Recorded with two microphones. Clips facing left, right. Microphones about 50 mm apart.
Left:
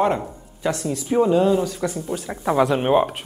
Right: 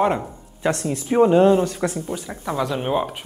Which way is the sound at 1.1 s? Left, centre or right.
Right.